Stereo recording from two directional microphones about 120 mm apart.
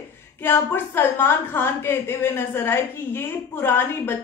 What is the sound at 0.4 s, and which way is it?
A woman's voice, 20° left (ahead or behind).